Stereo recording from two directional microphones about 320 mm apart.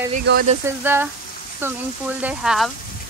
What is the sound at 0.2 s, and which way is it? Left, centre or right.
Speech, right.